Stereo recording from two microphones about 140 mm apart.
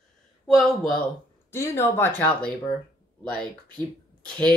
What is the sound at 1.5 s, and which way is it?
Speech, 20° left (ahead or behind).